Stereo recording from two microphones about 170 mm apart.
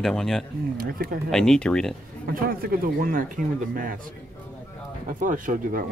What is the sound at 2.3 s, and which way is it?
Speech, 60° right (ahead or behind).